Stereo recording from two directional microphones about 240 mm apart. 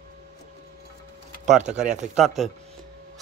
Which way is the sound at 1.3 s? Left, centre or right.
Right.